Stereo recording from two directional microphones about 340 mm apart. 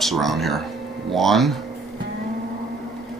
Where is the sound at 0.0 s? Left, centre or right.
Centre.